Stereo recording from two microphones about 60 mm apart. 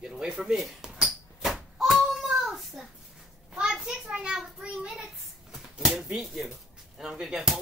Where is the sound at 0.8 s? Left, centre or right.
Centre.